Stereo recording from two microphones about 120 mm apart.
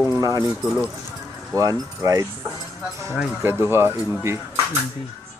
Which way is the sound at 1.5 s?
30° right (ahead or behind).